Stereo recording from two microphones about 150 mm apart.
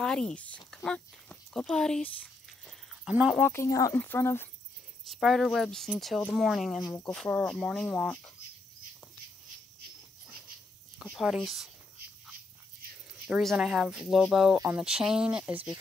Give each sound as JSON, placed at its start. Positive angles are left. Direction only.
{"t": 0.0, "sound": "speech", "side_deg": 5}
{"t": 3.1, "sound": "speech", "side_deg": -10}
{"t": 3.3, "sound": "speech", "side_deg": 15}
{"t": 5.0, "sound": "speech", "side_deg": 0}
{"t": 11.0, "sound": "speech", "side_deg": 0}
{"t": 13.3, "sound": "speech", "side_deg": 0}